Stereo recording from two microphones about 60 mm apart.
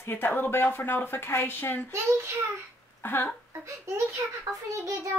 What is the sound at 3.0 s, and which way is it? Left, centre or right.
Speech, left.